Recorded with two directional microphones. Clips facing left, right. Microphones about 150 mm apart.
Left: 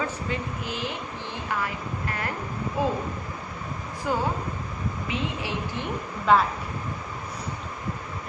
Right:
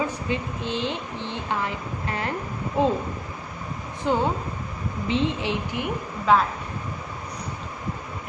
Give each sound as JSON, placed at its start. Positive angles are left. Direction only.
{"t": 0.0, "sound": "a woman's voice", "side_deg": -20}
{"t": 4.1, "sound": "a woman's voice", "side_deg": -25}
{"t": 6.3, "sound": "speech", "side_deg": 0}